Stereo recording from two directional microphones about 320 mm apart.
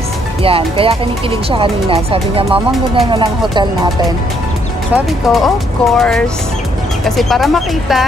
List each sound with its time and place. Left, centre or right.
0.4 s speech: centre
4.9 s speech: centre